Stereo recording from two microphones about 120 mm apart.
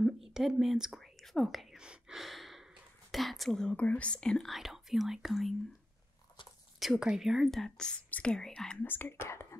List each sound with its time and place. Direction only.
0.0 s speech: 5° right (ahead or behind)
6.8 s speech: 5° right (ahead or behind)
8.8 s speech: 15° left (ahead or behind)